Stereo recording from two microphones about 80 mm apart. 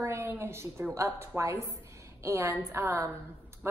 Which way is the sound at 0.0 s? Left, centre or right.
Right.